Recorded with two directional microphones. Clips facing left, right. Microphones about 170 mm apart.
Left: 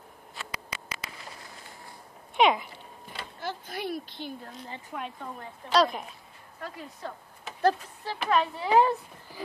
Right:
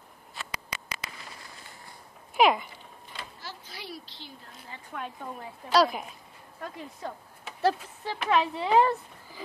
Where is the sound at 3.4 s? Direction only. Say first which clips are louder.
Left 13 dB; 55° left (ahead or behind).